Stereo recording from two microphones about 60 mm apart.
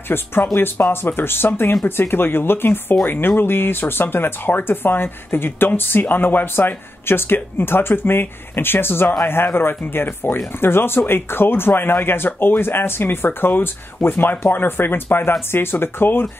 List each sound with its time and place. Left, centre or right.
0.1 s speech: left